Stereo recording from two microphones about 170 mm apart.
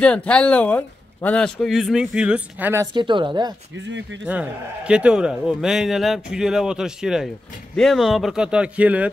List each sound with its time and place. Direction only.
0.0 s a man's voice: 5° left (ahead or behind); by 3.5 s 25° right (ahead or behind)
3.7 s speech: 90° right
4.3 s a man's voice: 5° right (ahead or behind)